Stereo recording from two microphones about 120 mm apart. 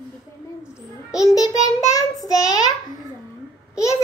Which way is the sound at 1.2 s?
30° left (ahead or behind).